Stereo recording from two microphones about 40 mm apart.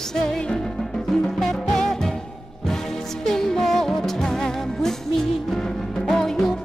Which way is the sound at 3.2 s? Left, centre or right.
Centre.